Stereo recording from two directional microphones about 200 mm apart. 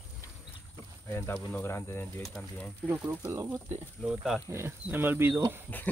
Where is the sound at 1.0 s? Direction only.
10° left (ahead or behind).